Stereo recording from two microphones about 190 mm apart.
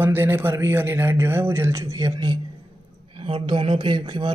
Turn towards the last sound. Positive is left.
turn(degrees=-25)  # may be behind; listen again after turning